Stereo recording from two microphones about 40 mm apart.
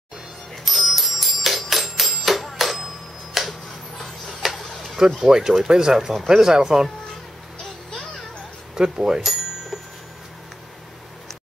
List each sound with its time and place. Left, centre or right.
0.7 s music: centre
2.4 s a sound: centre
3.4 s tick-tock: centre
5.2 s speech: centre
8.7 s bicycle bell: centre